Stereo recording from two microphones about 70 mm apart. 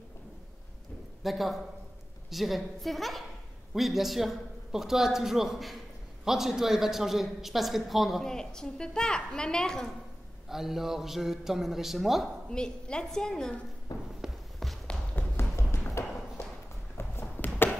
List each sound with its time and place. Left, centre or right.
1.2 s a man's voice: centre
10.5 s a man's voice: centre
12.4 s a woman's voice: centre
13.9 s a sound: left
14.2 s walk: centre
15.1 s music: left
16.9 s a sound: left